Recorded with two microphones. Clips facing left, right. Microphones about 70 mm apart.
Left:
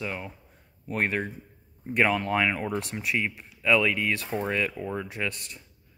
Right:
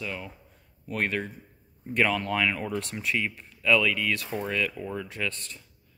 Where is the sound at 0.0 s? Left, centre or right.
Left.